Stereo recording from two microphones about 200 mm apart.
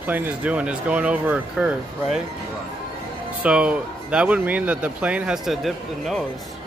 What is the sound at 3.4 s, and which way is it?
Speech, 5° right (ahead or behind).